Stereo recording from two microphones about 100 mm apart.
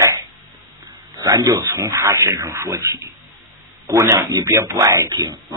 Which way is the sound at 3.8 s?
30° right (ahead or behind).